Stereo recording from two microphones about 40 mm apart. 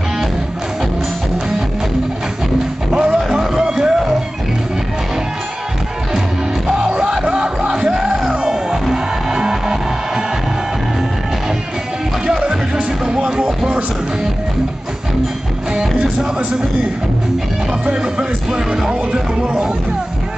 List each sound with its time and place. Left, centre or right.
2.9 s music: right
7.1 s music: centre
7.9 s music: centre
12.3 s music: centre
17.8 s speech: right
18.8 s music: centre